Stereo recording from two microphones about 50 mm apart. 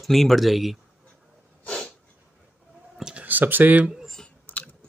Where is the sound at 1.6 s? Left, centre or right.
Left.